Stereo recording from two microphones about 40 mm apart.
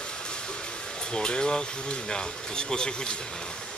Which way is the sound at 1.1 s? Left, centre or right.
Left.